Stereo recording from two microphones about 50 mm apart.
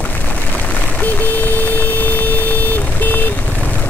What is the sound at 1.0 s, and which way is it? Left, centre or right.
Vehicle, left.